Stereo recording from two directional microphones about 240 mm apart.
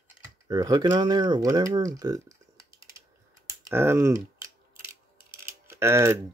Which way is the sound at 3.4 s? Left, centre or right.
Centre.